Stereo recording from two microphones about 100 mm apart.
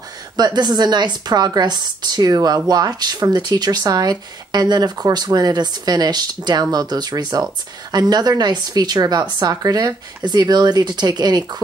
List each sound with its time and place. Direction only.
0.4 s speech: 45° right (ahead or behind)